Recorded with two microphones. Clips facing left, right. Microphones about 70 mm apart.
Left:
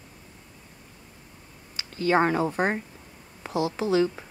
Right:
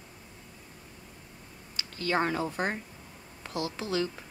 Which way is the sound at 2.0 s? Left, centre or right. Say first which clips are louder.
Left 6 dB; centre.